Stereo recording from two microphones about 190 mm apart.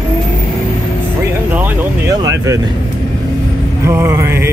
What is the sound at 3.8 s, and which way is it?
Vehicle, 15° right (ahead or behind).